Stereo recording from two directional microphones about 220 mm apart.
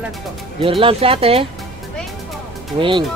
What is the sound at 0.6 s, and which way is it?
Speech, 25° right (ahead or behind).